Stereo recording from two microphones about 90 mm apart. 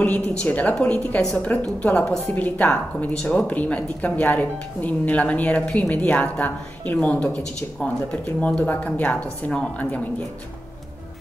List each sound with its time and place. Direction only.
0.0 s a woman's voice: 15° left (ahead or behind)